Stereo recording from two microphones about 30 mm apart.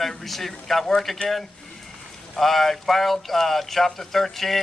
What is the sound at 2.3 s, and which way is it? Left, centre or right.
A man's voice, centre.